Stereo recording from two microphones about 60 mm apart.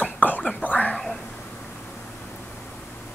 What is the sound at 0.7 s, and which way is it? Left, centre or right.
Whispering, left.